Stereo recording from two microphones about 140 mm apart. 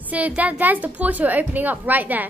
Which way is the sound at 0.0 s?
10° right (ahead or behind).